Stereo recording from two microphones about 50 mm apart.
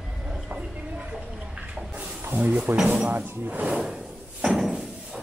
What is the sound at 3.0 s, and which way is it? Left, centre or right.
Speech, right.